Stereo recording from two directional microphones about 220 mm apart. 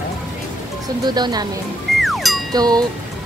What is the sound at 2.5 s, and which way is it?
Speech, 15° right (ahead or behind).